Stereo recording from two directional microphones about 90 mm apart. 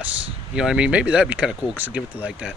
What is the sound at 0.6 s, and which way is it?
Speech, 10° right (ahead or behind).